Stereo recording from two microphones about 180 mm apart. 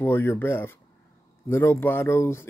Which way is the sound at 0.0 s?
10° left (ahead or behind).